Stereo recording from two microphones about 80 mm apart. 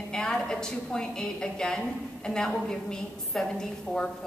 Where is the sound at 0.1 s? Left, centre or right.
Centre.